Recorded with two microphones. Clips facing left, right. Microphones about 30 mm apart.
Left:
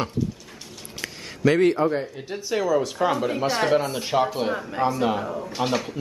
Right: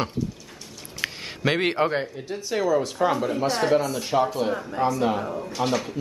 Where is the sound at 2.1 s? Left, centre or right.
Centre.